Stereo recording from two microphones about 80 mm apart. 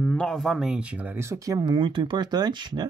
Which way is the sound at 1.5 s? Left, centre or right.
Right.